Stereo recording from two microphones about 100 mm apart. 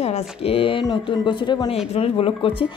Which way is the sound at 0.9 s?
55° left (ahead or behind).